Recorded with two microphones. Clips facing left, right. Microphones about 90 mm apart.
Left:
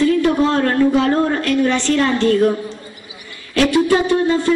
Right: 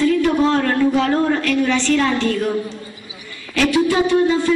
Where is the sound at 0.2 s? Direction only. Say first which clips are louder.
Left 1 dB; 30° left (ahead or behind).